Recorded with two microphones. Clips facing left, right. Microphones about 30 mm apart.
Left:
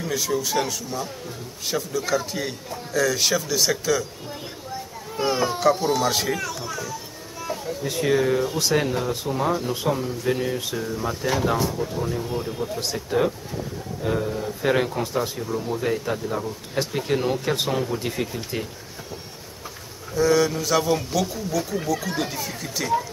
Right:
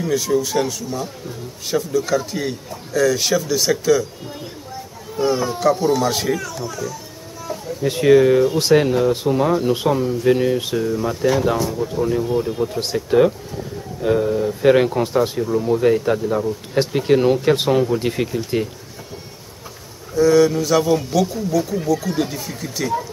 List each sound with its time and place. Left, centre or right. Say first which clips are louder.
0.0 s a man's voice: right 6 dB; centre
5.1 s speech: right 3 dB; centre
5.6 s a man's voice: right 4 dB; centre
7.8 s speech: right 9 dB; right
9.1 s speech: right 6 dB; right
10.8 s a man's voice: right 7 dB; centre
12.0 s speech: right 8 dB; centre
12.6 s speech: right 6 dB; right
14.0 s speech: right 8 dB; centre
17.9 s speech: right 7 dB; right
18.2 s speech: right 7 dB; centre
20.2 s a man's voice: right 6 dB; centre